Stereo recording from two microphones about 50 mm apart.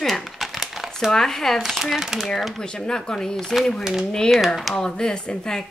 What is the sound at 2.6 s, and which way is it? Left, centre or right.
A woman's voice, centre.